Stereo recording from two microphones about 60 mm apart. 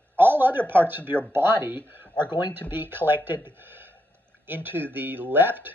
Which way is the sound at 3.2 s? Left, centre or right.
Right.